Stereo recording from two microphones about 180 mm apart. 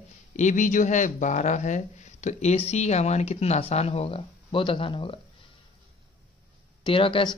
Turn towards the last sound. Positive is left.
turn(degrees=30)  # may be behind; listen again after turning